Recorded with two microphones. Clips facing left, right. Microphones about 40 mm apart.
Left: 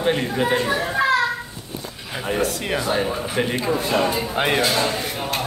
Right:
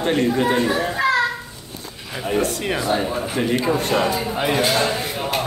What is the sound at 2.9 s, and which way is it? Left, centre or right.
Speech, centre.